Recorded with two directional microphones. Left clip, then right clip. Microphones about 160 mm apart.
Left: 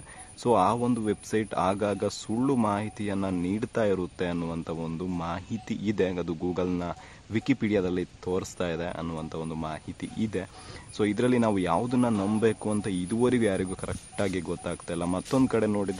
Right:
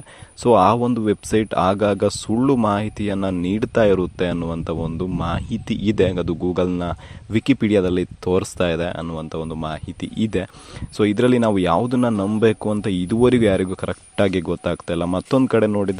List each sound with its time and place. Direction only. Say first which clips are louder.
0.4 s speech: right 9 dB; 45° right (ahead or behind)